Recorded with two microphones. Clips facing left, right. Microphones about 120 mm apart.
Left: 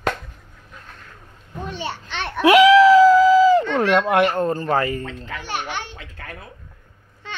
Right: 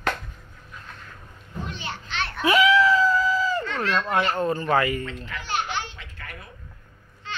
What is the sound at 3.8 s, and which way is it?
Speech, 85° left.